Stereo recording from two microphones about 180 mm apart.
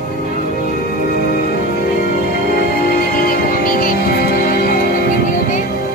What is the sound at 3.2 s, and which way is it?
Music, 50° left (ahead or behind).